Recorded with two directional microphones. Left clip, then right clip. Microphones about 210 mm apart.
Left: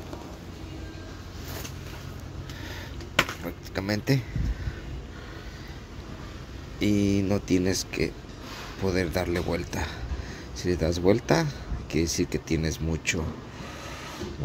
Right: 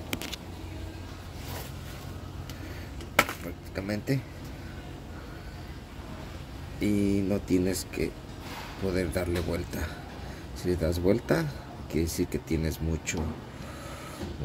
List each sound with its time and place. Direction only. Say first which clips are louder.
3.7 s speech: left 4 dB; 15° left (ahead or behind)
6.8 s speech: left 3 dB; 10° left (ahead or behind)